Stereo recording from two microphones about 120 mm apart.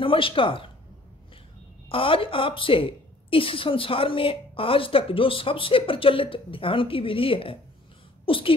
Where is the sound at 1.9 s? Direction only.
50° left (ahead or behind).